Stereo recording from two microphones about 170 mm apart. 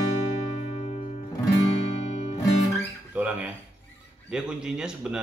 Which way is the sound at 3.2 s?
10° right (ahead or behind).